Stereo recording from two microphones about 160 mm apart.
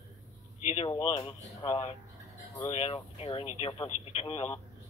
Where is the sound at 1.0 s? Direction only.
30° left (ahead or behind).